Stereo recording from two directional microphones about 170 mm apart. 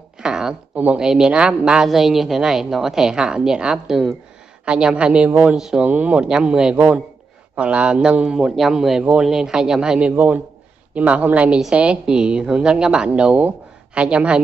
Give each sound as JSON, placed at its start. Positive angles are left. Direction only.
{"t": 0.2, "sound": "a woman's voice", "side_deg": -5}